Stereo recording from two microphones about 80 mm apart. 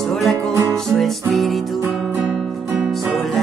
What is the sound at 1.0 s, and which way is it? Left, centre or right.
Music, centre.